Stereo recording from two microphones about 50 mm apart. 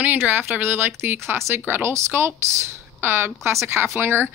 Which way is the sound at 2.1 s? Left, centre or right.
Right.